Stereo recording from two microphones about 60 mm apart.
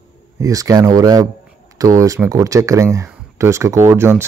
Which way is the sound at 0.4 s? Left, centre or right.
Right.